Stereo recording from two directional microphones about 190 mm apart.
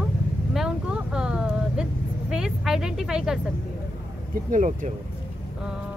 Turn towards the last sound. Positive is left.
turn(degrees=-40)  # may be behind; listen again after turning